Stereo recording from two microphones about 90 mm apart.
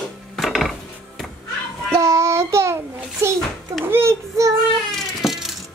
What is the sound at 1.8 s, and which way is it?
Child singing, 35° right (ahead or behind).